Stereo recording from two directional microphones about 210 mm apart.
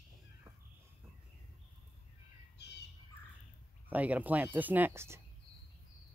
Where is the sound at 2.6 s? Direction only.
55° left (ahead or behind).